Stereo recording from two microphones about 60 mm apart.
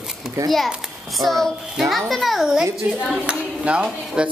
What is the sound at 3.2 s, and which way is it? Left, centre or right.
Speech, centre.